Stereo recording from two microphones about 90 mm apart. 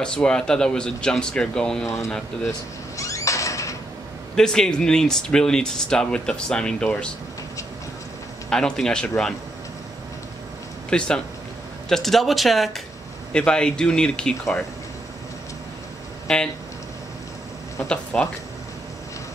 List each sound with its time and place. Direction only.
0.0 s speech: 10° left (ahead or behind)
3.0 s squeak: 35° left (ahead or behind)
4.4 s speech: 5° left (ahead or behind)
8.5 s speech: 5° left (ahead or behind)
10.9 s speech: 10° left (ahead or behind)
16.3 s speech: 5° left (ahead or behind)
17.8 s speech: 15° left (ahead or behind)